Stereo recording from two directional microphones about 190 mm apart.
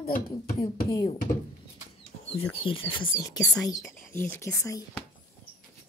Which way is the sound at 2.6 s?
25° left (ahead or behind).